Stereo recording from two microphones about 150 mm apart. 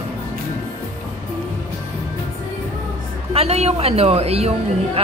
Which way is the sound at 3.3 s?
45° right (ahead or behind).